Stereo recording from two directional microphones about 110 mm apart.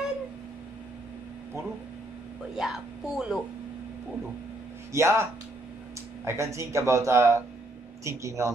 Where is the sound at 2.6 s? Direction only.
Centre (ahead or behind).